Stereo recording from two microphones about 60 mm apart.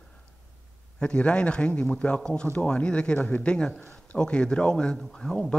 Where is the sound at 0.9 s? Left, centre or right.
Centre.